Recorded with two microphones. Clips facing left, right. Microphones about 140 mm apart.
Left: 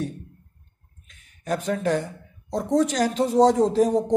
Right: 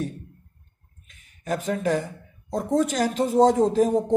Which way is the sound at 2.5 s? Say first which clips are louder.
Left 1 dB; 5° right (ahead or behind).